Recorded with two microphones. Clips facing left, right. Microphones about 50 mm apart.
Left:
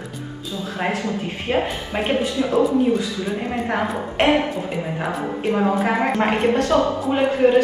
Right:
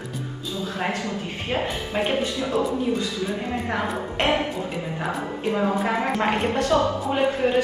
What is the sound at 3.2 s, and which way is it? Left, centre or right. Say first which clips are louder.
Speech: left 3 dB; left.